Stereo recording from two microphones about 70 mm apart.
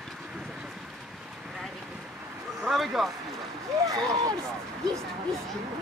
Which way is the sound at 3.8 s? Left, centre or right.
Right.